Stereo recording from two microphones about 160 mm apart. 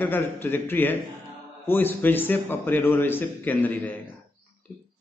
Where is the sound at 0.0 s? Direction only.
15° left (ahead or behind).